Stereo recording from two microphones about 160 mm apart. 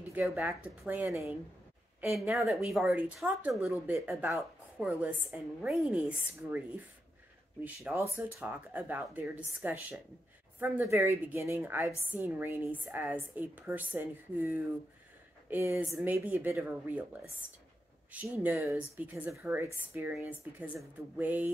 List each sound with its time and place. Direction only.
0.1 s a woman's voice: 15° right (ahead or behind)
4.4 s a woman's voice: centre (ahead or behind)
7.6 s a woman's voice: 10° right (ahead or behind)